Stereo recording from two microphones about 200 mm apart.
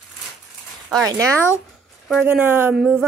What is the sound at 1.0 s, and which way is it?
Speech, 15° right (ahead or behind).